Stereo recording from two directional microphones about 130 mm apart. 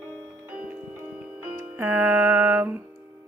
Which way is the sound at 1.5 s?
15° right (ahead or behind).